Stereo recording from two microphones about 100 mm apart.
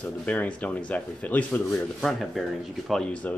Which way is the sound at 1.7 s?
Centre (ahead or behind).